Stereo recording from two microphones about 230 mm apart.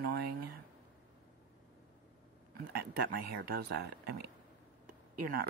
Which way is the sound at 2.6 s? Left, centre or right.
Right.